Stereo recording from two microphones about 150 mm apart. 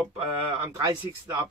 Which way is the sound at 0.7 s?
20° right (ahead or behind).